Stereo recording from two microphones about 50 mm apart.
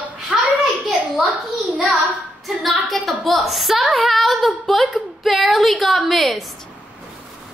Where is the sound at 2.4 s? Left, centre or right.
Centre.